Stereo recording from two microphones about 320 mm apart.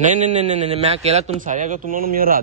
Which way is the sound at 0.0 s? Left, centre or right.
Right.